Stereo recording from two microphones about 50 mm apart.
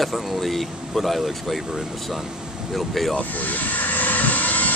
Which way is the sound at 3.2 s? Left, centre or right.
Left.